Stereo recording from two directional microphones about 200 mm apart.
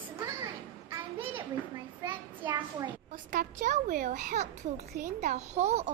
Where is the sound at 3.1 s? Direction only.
40° right (ahead or behind).